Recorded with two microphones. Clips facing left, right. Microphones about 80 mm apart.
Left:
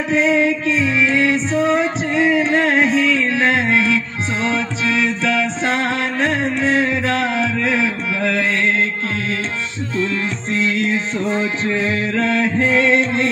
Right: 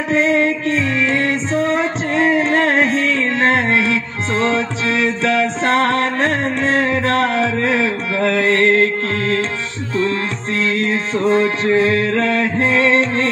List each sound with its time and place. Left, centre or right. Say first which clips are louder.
0.1 s music: right 1 dB; right
4.8 s music: even; right
8.2 s music: right 5 dB; right
10.5 s music: even; right